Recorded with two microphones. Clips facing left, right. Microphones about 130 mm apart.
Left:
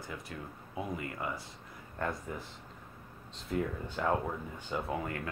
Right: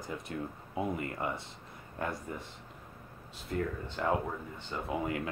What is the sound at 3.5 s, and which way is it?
Speech, 5° left (ahead or behind).